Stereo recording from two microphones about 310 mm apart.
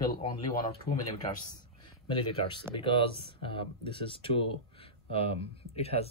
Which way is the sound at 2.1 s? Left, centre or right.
Centre.